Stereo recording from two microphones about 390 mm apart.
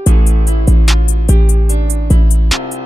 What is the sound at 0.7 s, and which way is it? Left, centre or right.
Music, centre.